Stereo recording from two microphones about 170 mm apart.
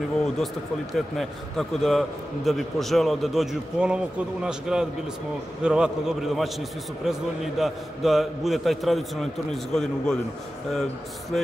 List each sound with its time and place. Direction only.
0.9 s a man's voice: centre (ahead or behind)